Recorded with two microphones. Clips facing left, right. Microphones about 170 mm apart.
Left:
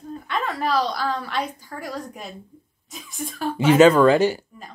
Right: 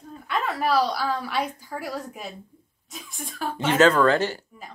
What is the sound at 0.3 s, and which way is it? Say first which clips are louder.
A woman's voice: even; 10° right (ahead or behind).